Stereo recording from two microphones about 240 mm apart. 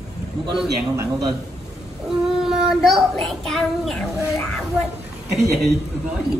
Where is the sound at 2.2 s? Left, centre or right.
Centre.